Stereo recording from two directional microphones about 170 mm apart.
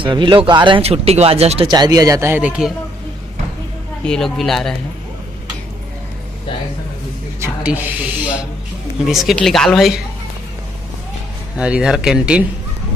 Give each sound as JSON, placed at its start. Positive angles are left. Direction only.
{"t": 0.0, "sound": "speech", "side_deg": -30}
{"t": 1.7, "sound": "speech", "side_deg": -25}
{"t": 4.0, "sound": "speech", "side_deg": 5}
{"t": 7.3, "sound": "speech", "side_deg": -10}
{"t": 11.5, "sound": "speech", "side_deg": -5}